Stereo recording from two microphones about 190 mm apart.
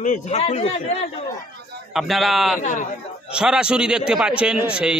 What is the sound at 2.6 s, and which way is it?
Speech, 40° left (ahead or behind).